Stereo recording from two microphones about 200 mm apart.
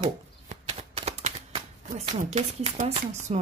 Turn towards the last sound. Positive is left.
turn(degrees=-30)  # may be behind; listen again after turning